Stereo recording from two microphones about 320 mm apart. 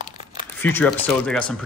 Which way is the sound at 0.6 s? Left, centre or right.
Centre.